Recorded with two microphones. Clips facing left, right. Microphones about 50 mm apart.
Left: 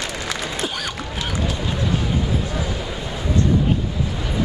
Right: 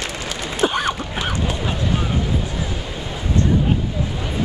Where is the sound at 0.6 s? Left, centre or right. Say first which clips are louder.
Right 7 dB; right.